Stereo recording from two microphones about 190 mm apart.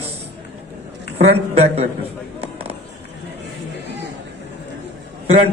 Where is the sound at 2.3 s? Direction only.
30° right (ahead or behind).